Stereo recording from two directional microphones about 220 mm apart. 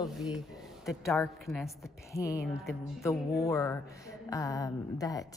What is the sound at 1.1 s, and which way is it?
Speech, centre (ahead or behind).